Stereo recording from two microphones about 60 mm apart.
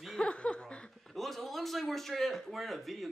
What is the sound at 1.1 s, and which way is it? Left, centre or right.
Speech, centre.